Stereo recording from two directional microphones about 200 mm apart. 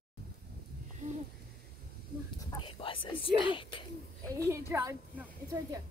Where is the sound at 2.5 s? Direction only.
25° left (ahead or behind).